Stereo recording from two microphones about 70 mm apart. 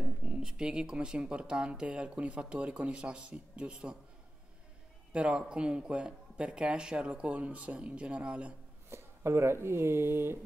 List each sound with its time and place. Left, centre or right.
0.0 s speech: centre
5.1 s speech: centre
8.9 s speech: right